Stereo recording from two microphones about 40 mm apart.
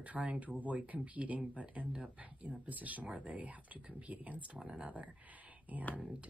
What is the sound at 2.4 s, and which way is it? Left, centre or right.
Speech, right.